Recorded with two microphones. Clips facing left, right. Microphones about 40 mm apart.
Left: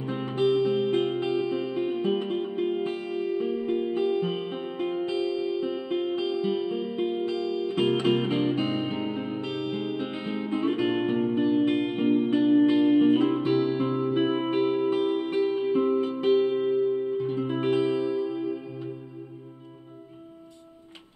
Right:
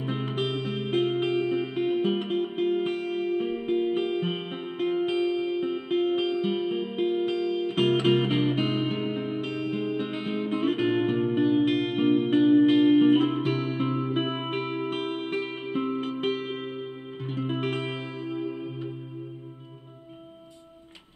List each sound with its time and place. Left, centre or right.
0.2 s music: right
4.0 s music: right
9.1 s music: centre
9.4 s music: right
11.3 s music: right
12.0 s music: right
14.9 s music: right
17.3 s music: right